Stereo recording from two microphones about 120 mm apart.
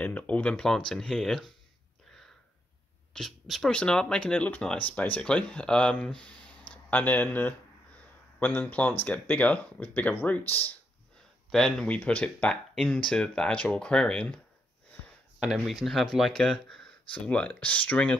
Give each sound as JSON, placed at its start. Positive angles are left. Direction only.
{"t": 0.0, "sound": "speech", "side_deg": 10}
{"t": 3.1, "sound": "speech", "side_deg": 5}
{"t": 15.4, "sound": "speech", "side_deg": 0}